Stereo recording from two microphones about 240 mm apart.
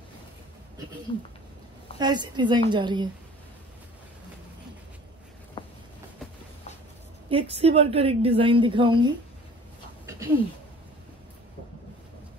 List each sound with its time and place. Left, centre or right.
2.0 s a woman's voice: centre
7.2 s a woman's voice: right
10.0 s a sound: centre